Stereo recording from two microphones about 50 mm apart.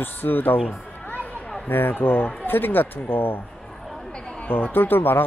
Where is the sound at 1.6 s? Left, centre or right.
Left.